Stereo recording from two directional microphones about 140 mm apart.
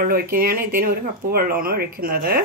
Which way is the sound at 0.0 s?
90° right.